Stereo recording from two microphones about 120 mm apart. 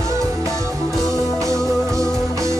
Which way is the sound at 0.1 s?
25° right (ahead or behind).